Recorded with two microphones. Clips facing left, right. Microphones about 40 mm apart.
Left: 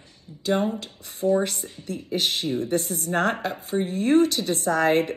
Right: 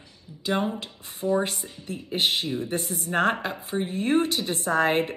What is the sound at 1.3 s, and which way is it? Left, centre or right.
Speech, right.